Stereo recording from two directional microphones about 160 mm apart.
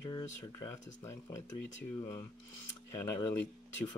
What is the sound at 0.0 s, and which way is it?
Speech, 25° left (ahead or behind).